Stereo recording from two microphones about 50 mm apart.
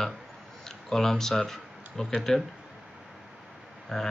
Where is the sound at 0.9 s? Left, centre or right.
Centre.